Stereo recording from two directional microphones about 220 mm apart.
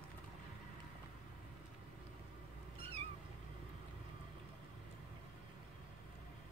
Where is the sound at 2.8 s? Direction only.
25° right (ahead or behind).